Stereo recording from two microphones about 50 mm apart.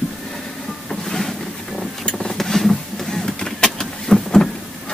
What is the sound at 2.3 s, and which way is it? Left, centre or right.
Printer, centre.